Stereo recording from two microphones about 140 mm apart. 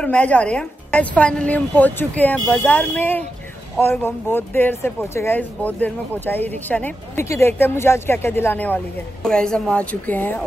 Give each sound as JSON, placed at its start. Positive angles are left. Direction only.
{"t": 0.0, "sound": "speech", "side_deg": 10}